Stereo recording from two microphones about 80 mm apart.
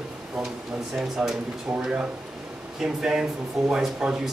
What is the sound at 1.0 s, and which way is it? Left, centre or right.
Speech, centre.